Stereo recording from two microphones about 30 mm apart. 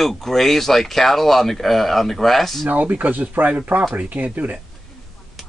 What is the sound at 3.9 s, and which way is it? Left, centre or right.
Speech, right.